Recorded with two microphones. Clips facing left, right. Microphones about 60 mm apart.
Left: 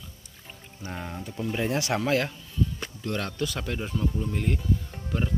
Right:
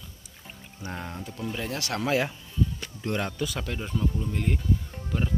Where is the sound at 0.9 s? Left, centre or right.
Centre.